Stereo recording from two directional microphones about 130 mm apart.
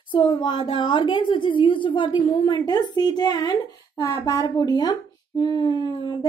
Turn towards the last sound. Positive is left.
turn(degrees=35)  # may be behind; listen again after turning